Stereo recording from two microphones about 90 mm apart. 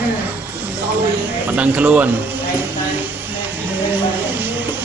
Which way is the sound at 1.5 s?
15° right (ahead or behind).